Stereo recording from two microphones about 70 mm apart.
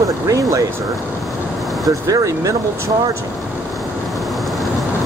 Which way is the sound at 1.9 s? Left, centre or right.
Right.